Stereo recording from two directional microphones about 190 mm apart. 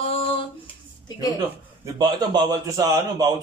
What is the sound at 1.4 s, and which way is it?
A man's voice, 20° right (ahead or behind).